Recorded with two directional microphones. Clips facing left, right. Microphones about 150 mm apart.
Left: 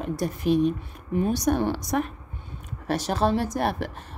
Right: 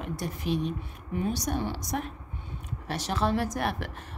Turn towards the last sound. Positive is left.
turn(degrees=35)  # may be behind; listen again after turning